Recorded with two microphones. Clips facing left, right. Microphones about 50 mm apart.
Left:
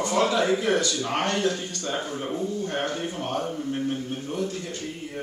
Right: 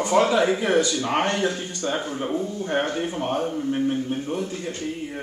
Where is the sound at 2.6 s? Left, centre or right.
Right.